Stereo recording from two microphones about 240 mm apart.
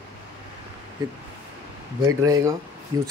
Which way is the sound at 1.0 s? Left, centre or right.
Centre.